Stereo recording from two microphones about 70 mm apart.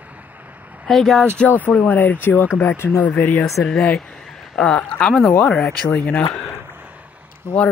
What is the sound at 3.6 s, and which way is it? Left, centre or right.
Speech, centre.